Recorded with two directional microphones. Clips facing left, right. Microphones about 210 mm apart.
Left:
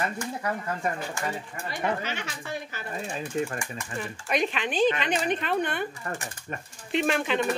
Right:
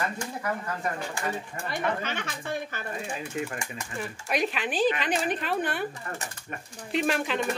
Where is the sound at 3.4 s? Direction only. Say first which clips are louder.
Left 4 dB; 35° left (ahead or behind).